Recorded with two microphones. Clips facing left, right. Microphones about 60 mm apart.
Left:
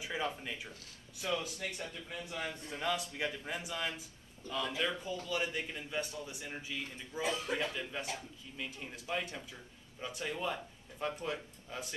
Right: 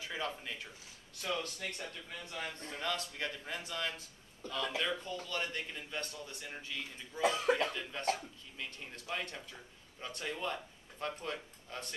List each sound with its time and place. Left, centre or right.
0.0 s a man's voice: centre
7.2 s speech: right
7.6 s a man's voice: centre